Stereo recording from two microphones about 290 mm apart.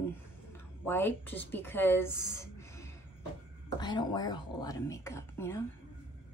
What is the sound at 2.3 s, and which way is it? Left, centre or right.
Music, centre.